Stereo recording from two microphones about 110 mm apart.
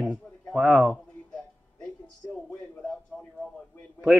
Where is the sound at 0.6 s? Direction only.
10° right (ahead or behind).